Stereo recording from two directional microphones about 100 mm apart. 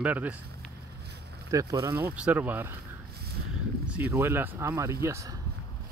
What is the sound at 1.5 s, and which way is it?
Speech, 35° right (ahead or behind).